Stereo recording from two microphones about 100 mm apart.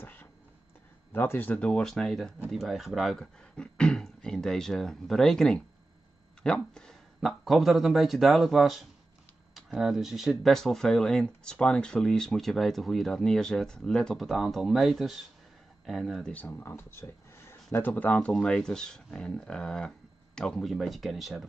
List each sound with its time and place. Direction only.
0.0 s a sound: 15° left (ahead or behind)
1.1 s speech: 20° left (ahead or behind); by 16.3 s centre (ahead or behind)
16.3 s speech: 20° left (ahead or behind); by 21.5 s centre (ahead or behind)